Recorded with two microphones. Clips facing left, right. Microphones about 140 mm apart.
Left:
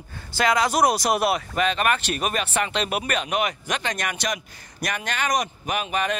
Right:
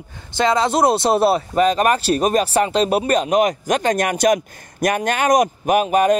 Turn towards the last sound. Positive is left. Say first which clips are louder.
# right 11 dB
turn(degrees=-45)  # may be behind; listen again after turning